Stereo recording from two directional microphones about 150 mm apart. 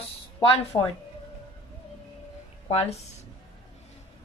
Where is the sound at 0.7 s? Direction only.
35° left (ahead or behind).